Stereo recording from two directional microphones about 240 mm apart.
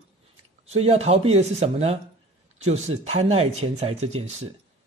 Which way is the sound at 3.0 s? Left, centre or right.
Right.